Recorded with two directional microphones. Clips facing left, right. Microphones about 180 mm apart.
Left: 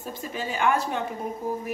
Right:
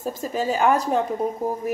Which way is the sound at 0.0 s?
40° right (ahead or behind).